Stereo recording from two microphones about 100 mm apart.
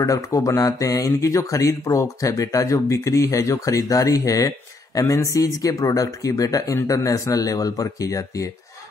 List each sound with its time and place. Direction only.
0.0 s speech: 35° left (ahead or behind)